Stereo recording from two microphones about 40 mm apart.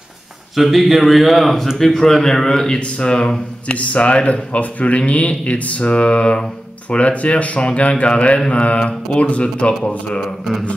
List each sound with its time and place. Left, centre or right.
0.6 s a man's voice: centre; by 3.7 s left
3.7 s speech: left